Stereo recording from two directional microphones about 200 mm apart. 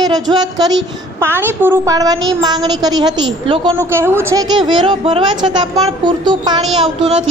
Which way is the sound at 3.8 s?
10° right (ahead or behind).